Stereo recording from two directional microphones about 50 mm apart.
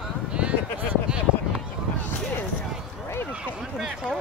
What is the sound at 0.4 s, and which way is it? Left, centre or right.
Sheep, right.